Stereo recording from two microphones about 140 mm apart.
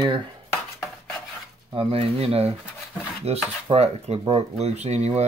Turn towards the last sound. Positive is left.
turn(degrees=-50)  # may be behind; listen again after turning